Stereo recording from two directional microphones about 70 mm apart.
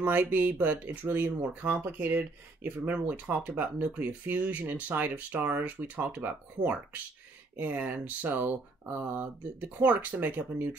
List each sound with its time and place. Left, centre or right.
0.0 s speech: right